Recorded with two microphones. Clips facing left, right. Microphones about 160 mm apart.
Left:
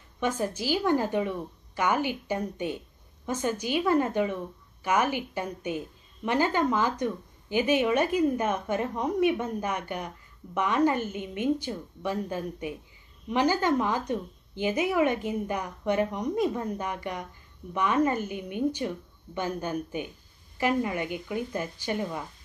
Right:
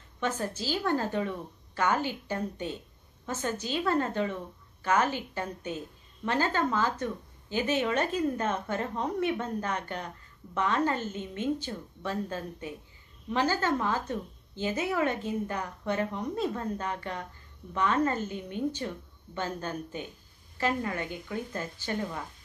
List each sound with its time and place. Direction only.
0.2 s a woman's voice: 15° left (ahead or behind)